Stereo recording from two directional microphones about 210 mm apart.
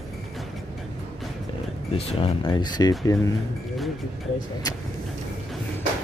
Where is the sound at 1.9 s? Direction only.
25° left (ahead or behind).